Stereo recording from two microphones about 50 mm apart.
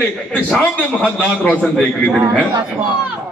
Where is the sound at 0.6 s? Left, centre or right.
Left.